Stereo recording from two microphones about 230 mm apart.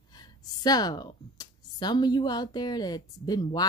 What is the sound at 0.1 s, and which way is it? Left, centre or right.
A woman's voice, centre.